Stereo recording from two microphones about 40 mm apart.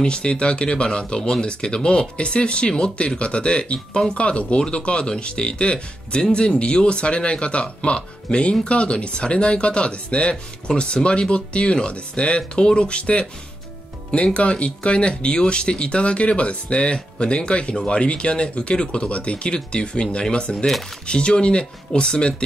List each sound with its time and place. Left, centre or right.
0.0 s speech: left
20.5 s speech: centre
21.1 s speech: left